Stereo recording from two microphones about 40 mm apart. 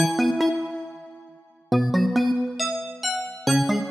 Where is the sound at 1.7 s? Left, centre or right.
Centre.